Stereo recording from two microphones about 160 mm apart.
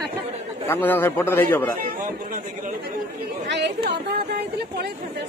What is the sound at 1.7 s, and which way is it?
Speech, 60° right (ahead or behind).